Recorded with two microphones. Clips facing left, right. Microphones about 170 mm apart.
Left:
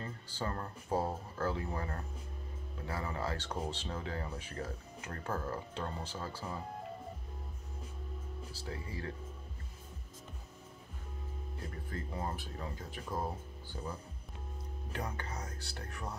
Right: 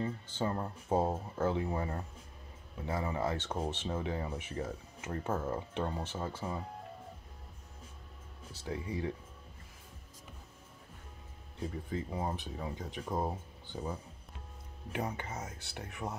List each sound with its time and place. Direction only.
0.0 s speech: 15° right (ahead or behind)
8.5 s speech: 20° right (ahead or behind)
11.6 s speech: 10° right (ahead or behind)